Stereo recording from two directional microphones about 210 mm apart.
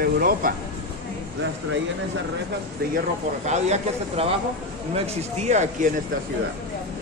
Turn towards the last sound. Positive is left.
turn(degrees=-35)  # may be behind; listen again after turning